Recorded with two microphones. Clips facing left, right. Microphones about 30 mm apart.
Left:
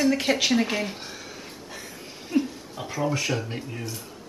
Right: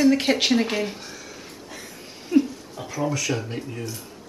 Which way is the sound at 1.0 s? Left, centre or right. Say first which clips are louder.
Even; centre.